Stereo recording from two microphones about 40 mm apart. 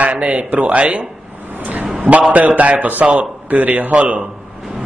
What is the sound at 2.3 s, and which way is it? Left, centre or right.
A man's voice, right.